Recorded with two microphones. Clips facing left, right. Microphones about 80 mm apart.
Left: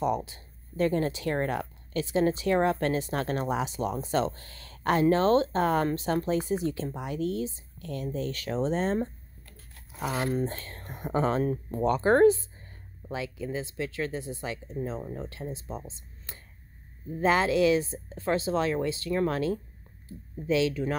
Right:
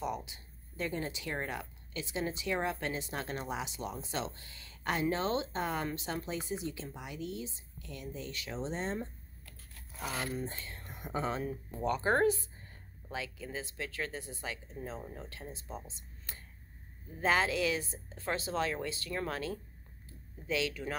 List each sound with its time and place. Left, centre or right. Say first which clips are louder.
0.0 s speech: left 9 dB; left
10.3 s speech: left 9 dB; left
13.1 s speech: left 7 dB; left